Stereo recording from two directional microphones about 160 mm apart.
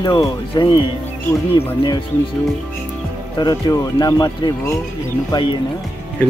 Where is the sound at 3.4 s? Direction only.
25° left (ahead or behind).